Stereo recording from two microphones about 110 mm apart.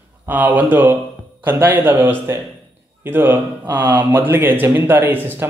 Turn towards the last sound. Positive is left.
turn(degrees=-20)  # may be behind; listen again after turning